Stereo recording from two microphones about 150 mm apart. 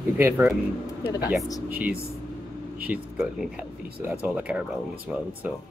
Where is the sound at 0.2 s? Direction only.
15° right (ahead or behind).